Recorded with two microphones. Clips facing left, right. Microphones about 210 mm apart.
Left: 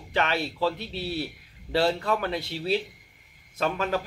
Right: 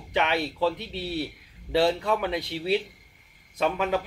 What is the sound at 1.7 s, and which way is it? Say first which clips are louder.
Speech: right 1 dB; 15° right (ahead or behind).